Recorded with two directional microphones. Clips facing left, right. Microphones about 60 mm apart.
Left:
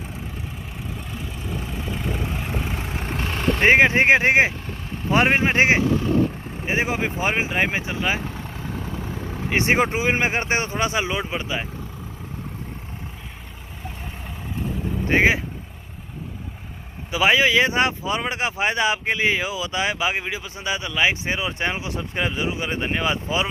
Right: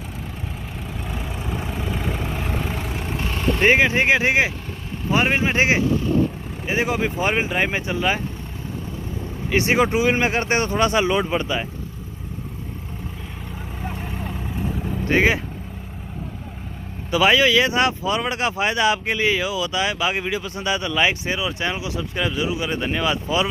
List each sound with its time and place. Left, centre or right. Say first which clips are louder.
1.6 s vehicle: right 2 dB; centre
2.8 s vehicle: right 1 dB; left
3.6 s speech: left 2 dB; left
6.6 s speech: right 1 dB; left; by 8.2 s centre
9.5 s speech: right 1 dB; left; by 11.6 s centre
15.0 s speech: even; centre
17.1 s speech: right 2 dB; centre